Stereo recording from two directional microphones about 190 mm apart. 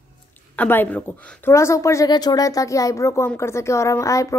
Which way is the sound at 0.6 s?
10° left (ahead or behind).